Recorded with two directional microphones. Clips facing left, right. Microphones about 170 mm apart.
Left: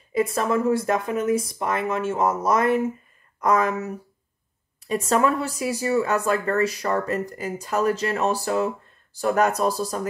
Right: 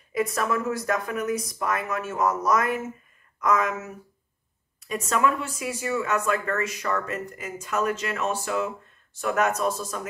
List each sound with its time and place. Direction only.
0.1 s speech: 30° left (ahead or behind)